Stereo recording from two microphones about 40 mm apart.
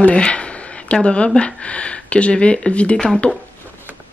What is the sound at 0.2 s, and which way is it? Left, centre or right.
Speech, left.